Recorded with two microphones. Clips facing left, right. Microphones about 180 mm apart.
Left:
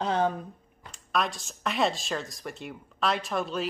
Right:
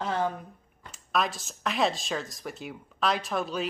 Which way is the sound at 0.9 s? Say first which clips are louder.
Even; centre (ahead or behind).